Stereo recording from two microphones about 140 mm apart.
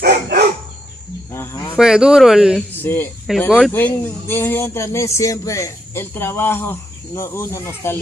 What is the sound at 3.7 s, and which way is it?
Speech, 15° left (ahead or behind).